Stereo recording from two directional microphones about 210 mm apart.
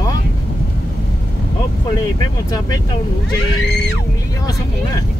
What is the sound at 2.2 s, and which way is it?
Speech, 15° left (ahead or behind).